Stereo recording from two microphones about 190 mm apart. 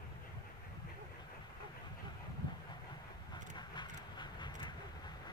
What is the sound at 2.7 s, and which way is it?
Train, 20° left (ahead or behind).